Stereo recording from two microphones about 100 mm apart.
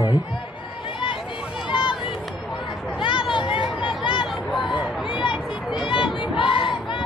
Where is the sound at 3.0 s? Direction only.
55° left (ahead or behind).